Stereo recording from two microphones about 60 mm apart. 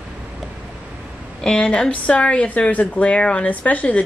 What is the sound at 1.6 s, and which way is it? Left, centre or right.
A woman's voice, centre.